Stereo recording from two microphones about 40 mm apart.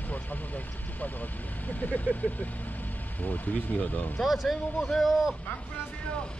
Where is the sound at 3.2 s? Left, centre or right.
Left.